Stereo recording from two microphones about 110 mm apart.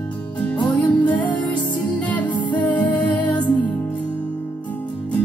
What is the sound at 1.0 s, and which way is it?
Music, 10° left (ahead or behind).